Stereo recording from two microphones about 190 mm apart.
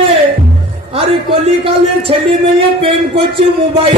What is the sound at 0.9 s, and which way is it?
Speech, 30° right (ahead or behind).